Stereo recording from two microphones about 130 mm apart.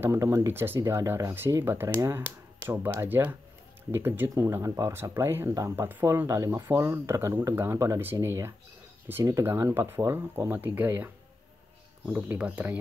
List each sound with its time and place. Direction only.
0.0 s speech: 20° right (ahead or behind)
12.1 s speech: 10° right (ahead or behind)